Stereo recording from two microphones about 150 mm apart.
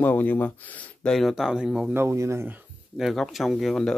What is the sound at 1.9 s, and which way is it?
Speech, 20° right (ahead or behind).